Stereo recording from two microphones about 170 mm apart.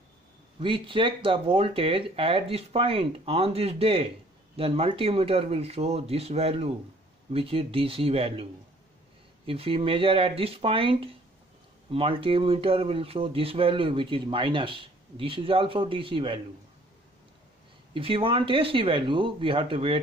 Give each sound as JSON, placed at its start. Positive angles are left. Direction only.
{"t": 0.6, "sound": "speech", "side_deg": -30}
{"t": 9.5, "sound": "speech", "side_deg": -35}
{"t": 17.9, "sound": "speech", "side_deg": -30}